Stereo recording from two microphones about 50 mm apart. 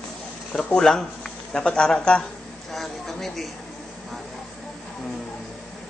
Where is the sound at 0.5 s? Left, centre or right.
Centre.